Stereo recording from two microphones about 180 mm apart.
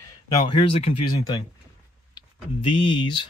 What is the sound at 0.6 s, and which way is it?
Speech, 30° left (ahead or behind).